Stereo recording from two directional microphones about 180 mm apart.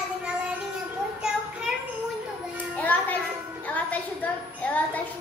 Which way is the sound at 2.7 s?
10° left (ahead or behind).